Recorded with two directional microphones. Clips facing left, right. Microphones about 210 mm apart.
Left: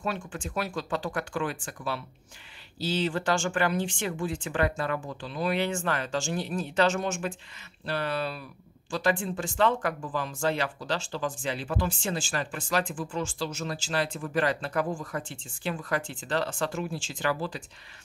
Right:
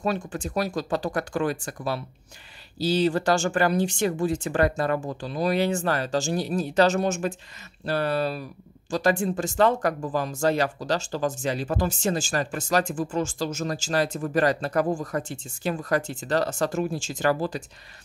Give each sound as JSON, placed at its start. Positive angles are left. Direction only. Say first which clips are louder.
{"t": 0.0, "sound": "speech", "louder": "right 6 dB", "side_deg": -40}